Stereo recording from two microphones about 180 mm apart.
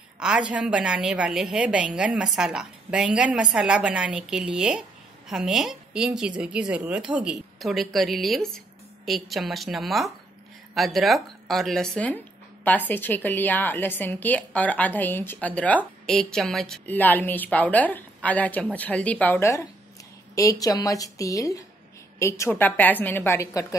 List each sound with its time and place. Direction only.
0.2 s a woman's voice: 5° right (ahead or behind); by 23.7 s 15° left (ahead or behind)